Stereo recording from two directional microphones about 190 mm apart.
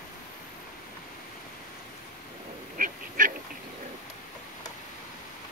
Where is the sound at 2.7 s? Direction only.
45° right (ahead or behind).